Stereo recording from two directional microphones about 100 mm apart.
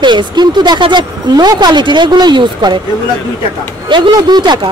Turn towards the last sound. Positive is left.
turn(degrees=-45)  # may be behind; listen again after turning